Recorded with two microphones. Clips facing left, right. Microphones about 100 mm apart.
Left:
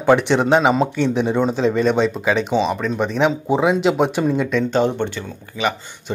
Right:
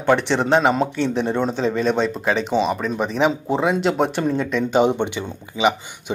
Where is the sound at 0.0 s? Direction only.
5° left (ahead or behind); by 6.1 s 15° right (ahead or behind).